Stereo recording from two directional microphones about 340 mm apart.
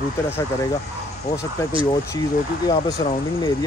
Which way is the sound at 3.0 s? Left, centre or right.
Left.